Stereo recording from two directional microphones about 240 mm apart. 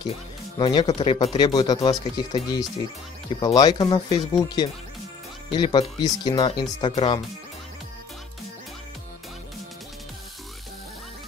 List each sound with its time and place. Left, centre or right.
0.0 s speech: centre